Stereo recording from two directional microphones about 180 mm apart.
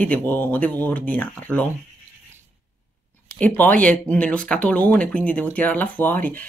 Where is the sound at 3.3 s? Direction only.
10° left (ahead or behind).